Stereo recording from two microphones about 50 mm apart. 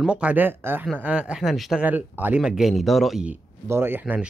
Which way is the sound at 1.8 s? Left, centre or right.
Right.